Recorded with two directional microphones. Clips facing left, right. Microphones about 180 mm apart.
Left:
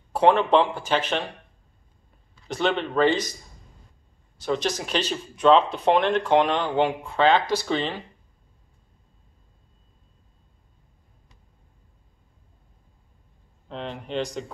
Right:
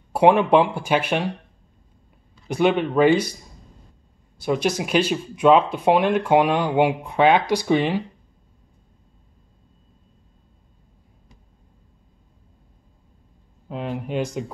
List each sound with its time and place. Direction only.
0.1 s speech: 10° right (ahead or behind)
2.4 s speech: 10° right (ahead or behind)
4.4 s speech: 10° right (ahead or behind)
13.7 s speech: 10° right (ahead or behind)